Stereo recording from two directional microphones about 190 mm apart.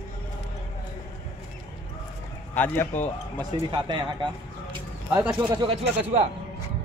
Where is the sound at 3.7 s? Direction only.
25° right (ahead or behind).